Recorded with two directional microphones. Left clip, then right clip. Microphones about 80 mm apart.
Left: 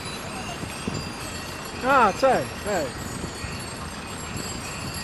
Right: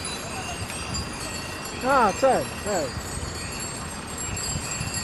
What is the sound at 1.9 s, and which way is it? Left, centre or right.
Speech, left.